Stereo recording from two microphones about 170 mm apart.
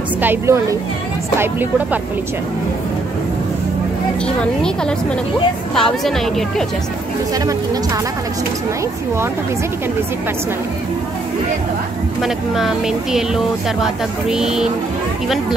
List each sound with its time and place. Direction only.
0.2 s a woman's voice: 15° right (ahead or behind)
4.4 s speech: 5° left (ahead or behind)
7.3 s speech: 20° right (ahead or behind)
12.2 s speech: centre (ahead or behind)